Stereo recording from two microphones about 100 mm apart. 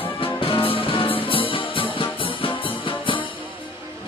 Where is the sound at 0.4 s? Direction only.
65° left (ahead or behind).